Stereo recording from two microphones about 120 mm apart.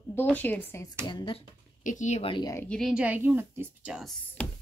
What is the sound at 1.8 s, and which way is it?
Speech, 90° left.